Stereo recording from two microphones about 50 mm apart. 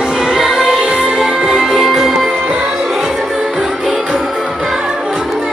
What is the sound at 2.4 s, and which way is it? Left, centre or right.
Music, right.